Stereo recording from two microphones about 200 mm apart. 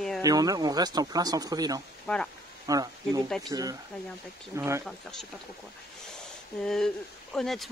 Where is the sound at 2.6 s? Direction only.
15° right (ahead or behind).